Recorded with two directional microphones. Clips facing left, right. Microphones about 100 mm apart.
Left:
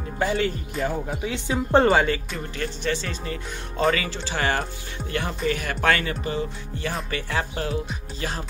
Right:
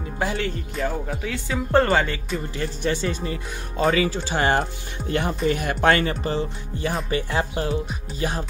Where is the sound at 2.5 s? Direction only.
15° right (ahead or behind); by 6.4 s 35° right (ahead or behind).